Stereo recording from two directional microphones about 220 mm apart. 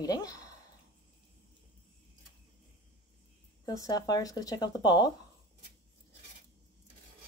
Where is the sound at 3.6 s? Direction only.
15° left (ahead or behind).